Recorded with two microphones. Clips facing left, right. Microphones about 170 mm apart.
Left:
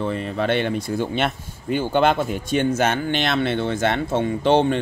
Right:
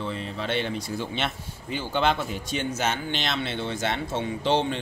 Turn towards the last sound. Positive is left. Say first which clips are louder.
# left 7 dB
turn(degrees=55)  # may be behind; listen again after turning